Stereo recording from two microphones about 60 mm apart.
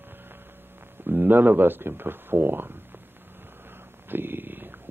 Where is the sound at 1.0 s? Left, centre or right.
Right.